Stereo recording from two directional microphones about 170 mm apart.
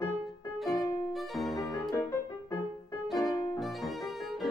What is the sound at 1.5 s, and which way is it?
Music, 20° left (ahead or behind).